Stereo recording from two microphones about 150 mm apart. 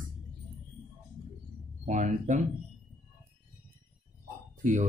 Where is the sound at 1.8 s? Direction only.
55° right (ahead or behind).